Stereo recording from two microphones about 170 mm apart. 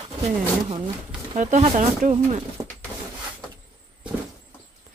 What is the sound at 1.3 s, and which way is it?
Speech, 40° right (ahead or behind).